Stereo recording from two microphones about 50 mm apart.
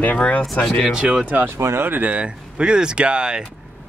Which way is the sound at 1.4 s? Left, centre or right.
Right.